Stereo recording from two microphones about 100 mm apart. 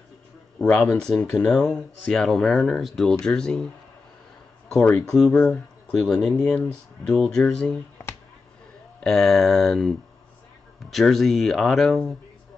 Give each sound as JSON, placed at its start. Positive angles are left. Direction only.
{"t": 0.6, "sound": "speech", "side_deg": 10}
{"t": 5.0, "sound": "speech", "side_deg": 5}
{"t": 6.5, "sound": "speech", "side_deg": 10}
{"t": 9.0, "sound": "speech", "side_deg": 5}